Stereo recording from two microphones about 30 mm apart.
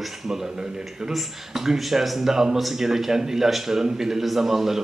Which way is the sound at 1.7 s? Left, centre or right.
Centre.